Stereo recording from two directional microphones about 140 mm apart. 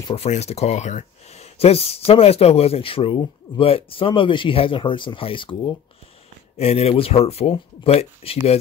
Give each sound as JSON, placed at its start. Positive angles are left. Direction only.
{"t": 0.1, "sound": "speech", "side_deg": 50}
{"t": 6.6, "sound": "speech", "side_deg": 45}